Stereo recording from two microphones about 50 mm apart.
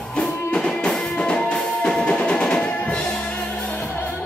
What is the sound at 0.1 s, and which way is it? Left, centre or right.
Music, centre.